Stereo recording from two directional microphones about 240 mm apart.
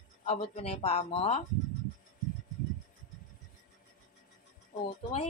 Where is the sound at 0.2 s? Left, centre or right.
Left.